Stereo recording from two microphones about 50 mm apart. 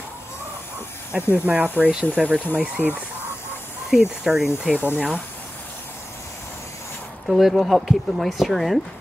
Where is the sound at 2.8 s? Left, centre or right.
Right.